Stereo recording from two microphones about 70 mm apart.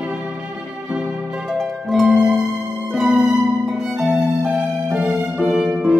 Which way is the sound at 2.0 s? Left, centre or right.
Centre.